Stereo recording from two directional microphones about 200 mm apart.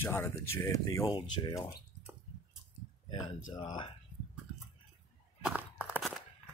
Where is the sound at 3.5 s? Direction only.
25° left (ahead or behind).